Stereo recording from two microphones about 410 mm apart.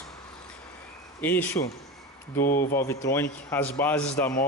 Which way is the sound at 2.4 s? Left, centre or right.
Left.